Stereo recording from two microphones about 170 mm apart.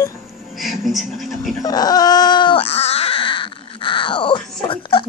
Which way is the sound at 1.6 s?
20° left (ahead or behind).